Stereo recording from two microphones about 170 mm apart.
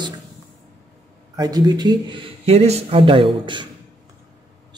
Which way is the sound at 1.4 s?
25° right (ahead or behind).